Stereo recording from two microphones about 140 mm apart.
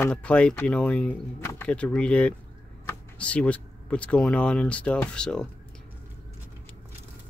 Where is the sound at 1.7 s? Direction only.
10° left (ahead or behind).